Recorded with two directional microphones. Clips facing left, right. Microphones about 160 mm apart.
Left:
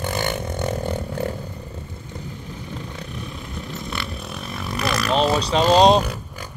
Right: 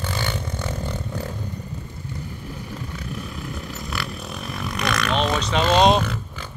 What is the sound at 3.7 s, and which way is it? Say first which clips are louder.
Vehicle: left 1 dB; centre (ahead or behind).